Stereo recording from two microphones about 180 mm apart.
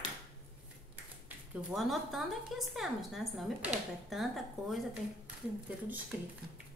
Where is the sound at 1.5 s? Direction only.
Centre (ahead or behind).